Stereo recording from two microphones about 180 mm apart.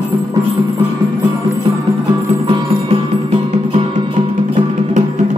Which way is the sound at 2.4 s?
35° right (ahead or behind).